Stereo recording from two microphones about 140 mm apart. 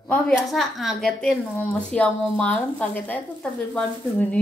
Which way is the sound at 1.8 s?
10° left (ahead or behind).